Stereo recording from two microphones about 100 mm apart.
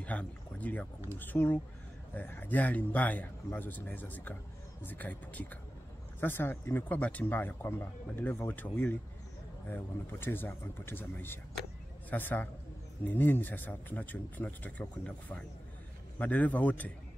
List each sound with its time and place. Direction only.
0.0 s speech: 15° left (ahead or behind)